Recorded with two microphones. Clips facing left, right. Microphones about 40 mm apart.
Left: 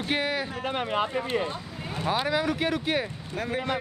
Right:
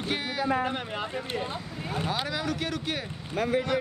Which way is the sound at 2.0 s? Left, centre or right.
Centre.